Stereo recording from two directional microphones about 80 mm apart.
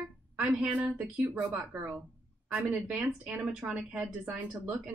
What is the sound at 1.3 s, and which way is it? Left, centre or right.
Speech, centre.